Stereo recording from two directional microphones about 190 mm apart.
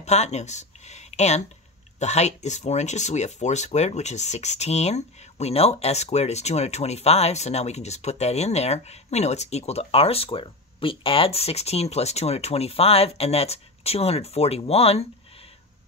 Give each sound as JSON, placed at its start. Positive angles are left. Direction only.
{"t": 0.0, "sound": "speech", "side_deg": 35}